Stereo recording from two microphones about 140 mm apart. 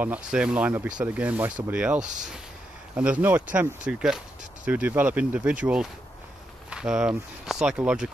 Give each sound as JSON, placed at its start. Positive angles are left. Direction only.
{"t": 0.0, "sound": "speech", "side_deg": -10}
{"t": 2.0, "sound": "speech", "side_deg": -65}
{"t": 3.0, "sound": "speech", "side_deg": -10}